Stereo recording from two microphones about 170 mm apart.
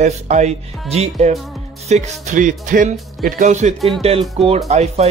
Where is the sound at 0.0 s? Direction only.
45° right (ahead or behind).